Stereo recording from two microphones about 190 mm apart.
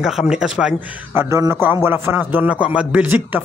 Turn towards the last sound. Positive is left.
turn(degrees=-10)  # may be behind; listen again after turning